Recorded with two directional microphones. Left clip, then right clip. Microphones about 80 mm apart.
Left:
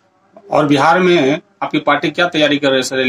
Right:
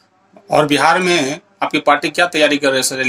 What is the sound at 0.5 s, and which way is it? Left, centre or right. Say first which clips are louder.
A man's voice: left 1 dB; left.